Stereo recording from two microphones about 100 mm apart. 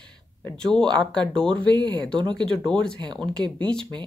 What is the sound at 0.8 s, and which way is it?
Speech, 10° left (ahead or behind).